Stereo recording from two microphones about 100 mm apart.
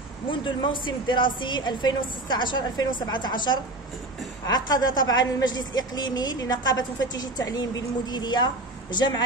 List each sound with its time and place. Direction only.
0.3 s a woman's voice: 55° left (ahead or behind)